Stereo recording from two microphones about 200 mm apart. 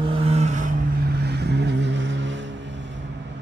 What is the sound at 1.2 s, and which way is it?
Vehicle, 55° right (ahead or behind).